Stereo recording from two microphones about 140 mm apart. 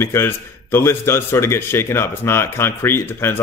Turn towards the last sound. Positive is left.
turn(degrees=15)  # may be behind; listen again after turning